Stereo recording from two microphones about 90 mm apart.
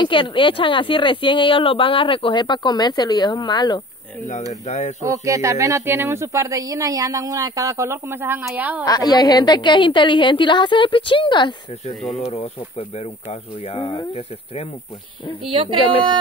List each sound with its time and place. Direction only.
0.0 s speech: 70° left (ahead or behind); by 3.8 s 55° left (ahead or behind)
5.0 s a woman's voice: 35° right (ahead or behind); by 8.8 s 20° right (ahead or behind)
8.8 s a woman's voice: 45° left (ahead or behind)
12.3 s speech: 90° left
15.4 s speech: 85° right